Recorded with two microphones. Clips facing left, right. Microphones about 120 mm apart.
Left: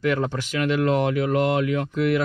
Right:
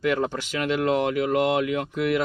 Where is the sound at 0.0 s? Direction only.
15° right (ahead or behind).